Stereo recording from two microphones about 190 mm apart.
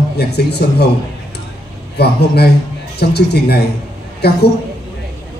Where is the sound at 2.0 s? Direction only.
60° left (ahead or behind).